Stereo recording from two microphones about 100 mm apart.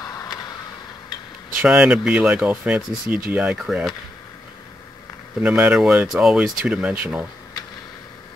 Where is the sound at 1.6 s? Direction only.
10° right (ahead or behind).